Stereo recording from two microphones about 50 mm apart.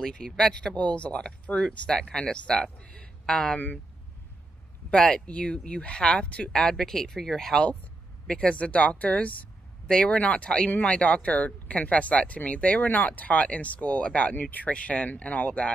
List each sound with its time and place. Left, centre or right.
0.0 s speech: centre
3.5 s speech: left
4.9 s speech: centre
8.3 s speech: left
9.8 s speech: centre